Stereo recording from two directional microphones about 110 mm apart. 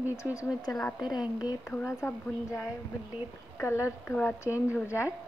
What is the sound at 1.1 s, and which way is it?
Speech, 40° left (ahead or behind).